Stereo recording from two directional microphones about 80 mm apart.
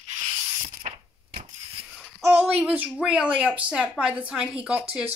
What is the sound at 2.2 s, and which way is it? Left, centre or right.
Speech, right.